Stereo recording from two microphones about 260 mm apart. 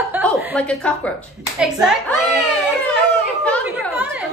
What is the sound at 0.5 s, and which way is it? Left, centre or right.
A woman's voice, centre.